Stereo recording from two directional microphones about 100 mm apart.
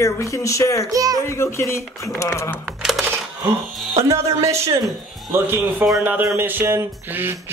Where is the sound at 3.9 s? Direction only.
30° right (ahead or behind).